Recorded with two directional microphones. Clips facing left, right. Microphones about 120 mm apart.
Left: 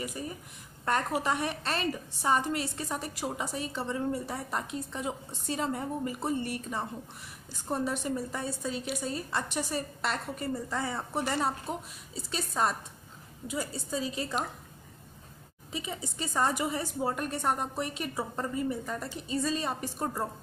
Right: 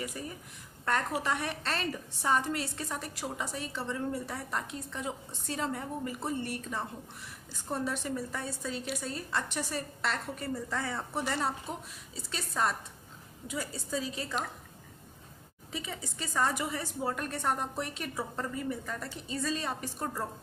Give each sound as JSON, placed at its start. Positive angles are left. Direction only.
{"t": 0.8, "sound": "a woman's voice", "side_deg": 15}
{"t": 15.7, "sound": "a woman's voice", "side_deg": 20}